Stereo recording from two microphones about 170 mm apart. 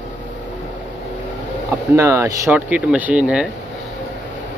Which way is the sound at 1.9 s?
15° right (ahead or behind).